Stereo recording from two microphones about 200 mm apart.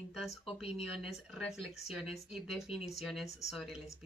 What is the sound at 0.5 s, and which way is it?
Speech, 30° left (ahead or behind).